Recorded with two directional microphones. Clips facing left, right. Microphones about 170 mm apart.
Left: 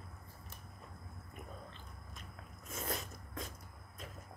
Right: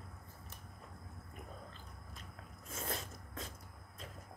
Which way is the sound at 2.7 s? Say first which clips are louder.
Left 1 dB; 25° right (ahead or behind).